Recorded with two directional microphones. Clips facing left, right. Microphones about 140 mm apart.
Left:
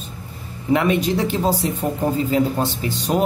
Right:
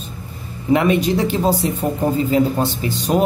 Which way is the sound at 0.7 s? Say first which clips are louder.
Right 2 dB; 20° right (ahead or behind).